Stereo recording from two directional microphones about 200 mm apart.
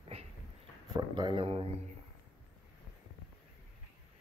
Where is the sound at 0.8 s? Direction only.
20° right (ahead or behind).